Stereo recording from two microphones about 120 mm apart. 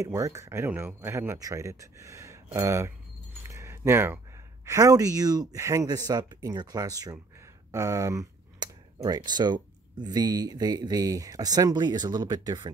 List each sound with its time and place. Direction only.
0.0 s speech: 25° right (ahead or behind)
3.4 s keys jangling: 25° right (ahead or behind)
4.6 s speech: 25° right (ahead or behind)